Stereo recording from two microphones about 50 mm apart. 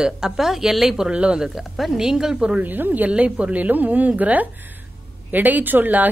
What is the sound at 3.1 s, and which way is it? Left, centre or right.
A woman's voice, right.